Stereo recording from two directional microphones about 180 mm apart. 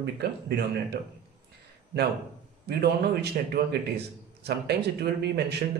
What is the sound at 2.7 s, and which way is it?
A man's voice, 65° right (ahead or behind).